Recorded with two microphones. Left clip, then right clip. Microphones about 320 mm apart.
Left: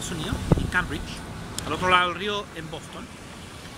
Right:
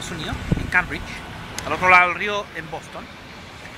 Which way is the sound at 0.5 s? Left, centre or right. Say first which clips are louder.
Left 5 dB; left.